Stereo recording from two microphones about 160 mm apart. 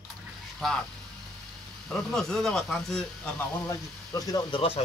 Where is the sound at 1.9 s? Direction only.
Centre (ahead or behind).